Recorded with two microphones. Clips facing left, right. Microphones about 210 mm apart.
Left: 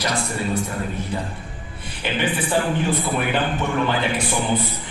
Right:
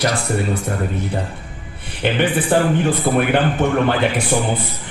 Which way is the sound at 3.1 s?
45° right (ahead or behind).